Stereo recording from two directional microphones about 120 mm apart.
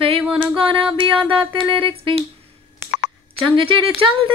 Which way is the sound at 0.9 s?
40° right (ahead or behind).